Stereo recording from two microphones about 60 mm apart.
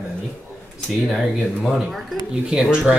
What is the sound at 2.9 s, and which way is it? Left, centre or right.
Speech, right.